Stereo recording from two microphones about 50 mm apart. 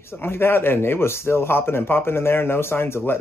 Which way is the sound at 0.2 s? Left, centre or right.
Left.